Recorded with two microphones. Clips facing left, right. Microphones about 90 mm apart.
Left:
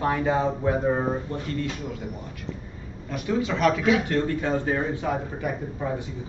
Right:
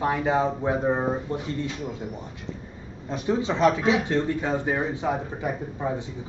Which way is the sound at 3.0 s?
25° right (ahead or behind).